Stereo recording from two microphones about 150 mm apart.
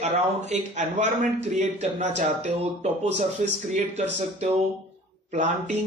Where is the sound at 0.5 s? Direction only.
50° right (ahead or behind).